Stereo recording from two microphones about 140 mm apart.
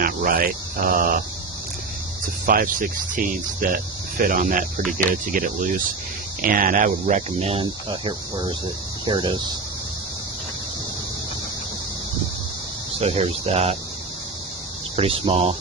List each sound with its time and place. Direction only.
0.0 s speech: 90° right
0.9 s a sound: 90° right
2.4 s speech: 85° right; by 7.6 s 50° right (ahead or behind)
7.6 s speech: 35° right (ahead or behind)
13.0 s speech: 50° right (ahead or behind)
15.0 s speech: 45° right (ahead or behind)